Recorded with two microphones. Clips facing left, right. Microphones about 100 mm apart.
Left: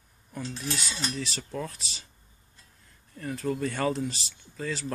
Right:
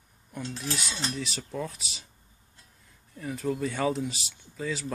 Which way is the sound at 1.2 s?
Centre (ahead or behind).